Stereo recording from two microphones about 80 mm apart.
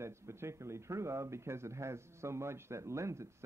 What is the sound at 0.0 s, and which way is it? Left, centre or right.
Speech, right.